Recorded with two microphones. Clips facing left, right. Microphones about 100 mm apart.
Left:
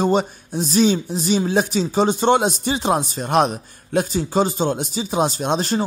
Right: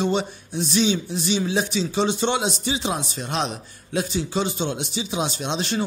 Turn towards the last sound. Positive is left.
turn(degrees=45)  # may be behind; listen again after turning